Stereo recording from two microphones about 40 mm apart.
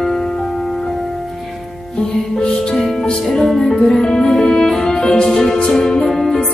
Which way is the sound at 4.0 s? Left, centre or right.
Centre.